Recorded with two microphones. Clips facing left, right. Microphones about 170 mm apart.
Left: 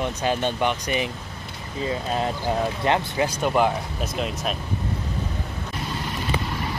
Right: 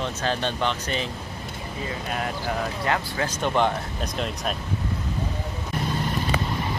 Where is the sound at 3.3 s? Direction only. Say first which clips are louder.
Left 1 dB; 5° left (ahead or behind).